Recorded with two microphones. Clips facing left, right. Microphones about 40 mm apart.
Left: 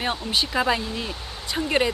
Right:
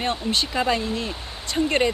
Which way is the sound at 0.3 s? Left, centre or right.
Centre.